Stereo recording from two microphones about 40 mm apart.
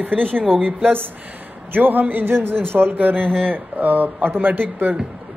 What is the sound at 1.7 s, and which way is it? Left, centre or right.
Speech, right.